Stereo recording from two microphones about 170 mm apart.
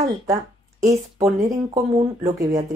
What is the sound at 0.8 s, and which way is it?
Speech, 45° right (ahead or behind).